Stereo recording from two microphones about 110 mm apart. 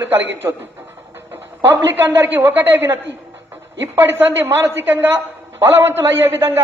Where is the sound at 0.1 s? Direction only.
20° right (ahead or behind).